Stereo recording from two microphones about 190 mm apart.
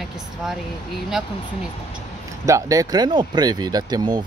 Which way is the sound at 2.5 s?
15° right (ahead or behind).